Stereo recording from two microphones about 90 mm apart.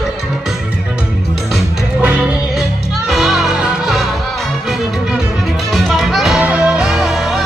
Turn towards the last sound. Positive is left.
turn(degrees=-5)  # may be behind; listen again after turning